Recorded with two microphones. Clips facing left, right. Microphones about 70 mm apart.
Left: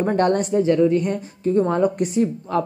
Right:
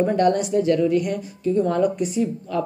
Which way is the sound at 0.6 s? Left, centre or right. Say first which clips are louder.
Left 2 dB; left.